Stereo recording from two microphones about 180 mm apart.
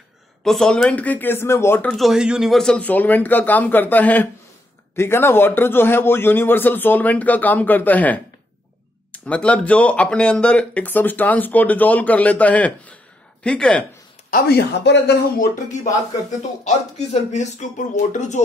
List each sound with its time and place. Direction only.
0.4 s speech: centre (ahead or behind)
1.9 s speech: centre (ahead or behind)
14.3 s speech: 65° left (ahead or behind)
15.7 s speech: 40° left (ahead or behind)